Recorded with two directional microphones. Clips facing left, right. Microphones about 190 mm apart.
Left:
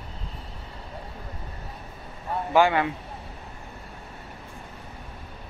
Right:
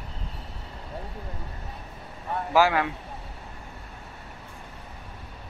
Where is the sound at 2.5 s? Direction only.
Centre (ahead or behind).